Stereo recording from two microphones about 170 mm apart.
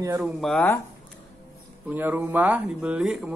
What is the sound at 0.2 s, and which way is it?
Speech, centre (ahead or behind).